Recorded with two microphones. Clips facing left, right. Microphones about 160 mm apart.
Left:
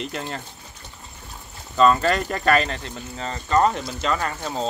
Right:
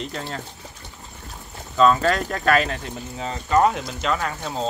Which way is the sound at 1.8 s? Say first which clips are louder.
Even; centre (ahead or behind).